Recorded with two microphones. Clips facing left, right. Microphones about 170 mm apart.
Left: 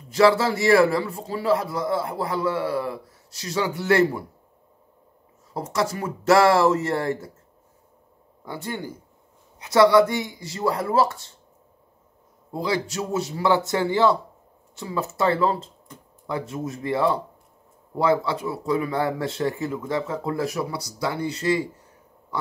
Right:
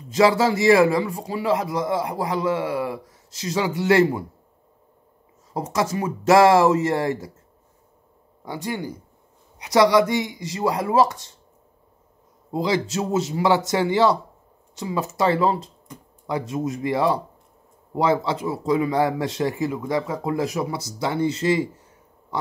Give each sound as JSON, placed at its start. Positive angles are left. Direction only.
{"t": 0.1, "sound": "a man's voice", "side_deg": -20}
{"t": 5.5, "sound": "a man's voice", "side_deg": -20}
{"t": 8.5, "sound": "speech", "side_deg": -15}
{"t": 12.5, "sound": "a man's voice", "side_deg": -20}